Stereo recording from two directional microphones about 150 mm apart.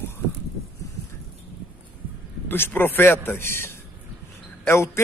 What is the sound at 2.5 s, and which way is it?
A man's voice, 15° left (ahead or behind).